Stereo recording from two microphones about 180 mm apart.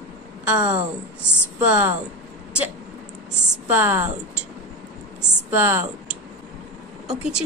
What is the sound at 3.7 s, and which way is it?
Speech, 10° right (ahead or behind).